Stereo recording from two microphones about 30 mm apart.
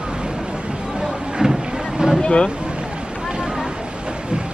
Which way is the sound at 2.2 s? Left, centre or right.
Left.